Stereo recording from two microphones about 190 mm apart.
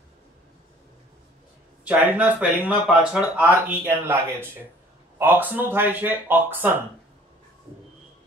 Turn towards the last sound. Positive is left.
turn(degrees=-10)  # may be behind; listen again after turning